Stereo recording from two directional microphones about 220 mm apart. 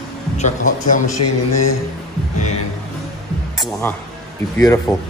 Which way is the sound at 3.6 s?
10° left (ahead or behind).